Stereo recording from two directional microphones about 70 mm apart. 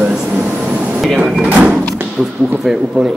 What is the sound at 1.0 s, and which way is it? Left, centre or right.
Speech, centre.